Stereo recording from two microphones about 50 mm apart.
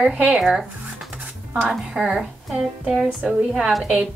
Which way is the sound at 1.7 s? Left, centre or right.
Centre.